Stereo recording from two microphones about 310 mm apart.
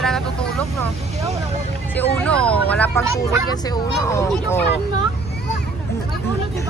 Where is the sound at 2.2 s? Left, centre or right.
Centre.